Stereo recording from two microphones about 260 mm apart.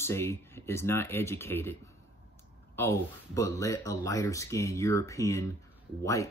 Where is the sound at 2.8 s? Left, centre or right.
Centre.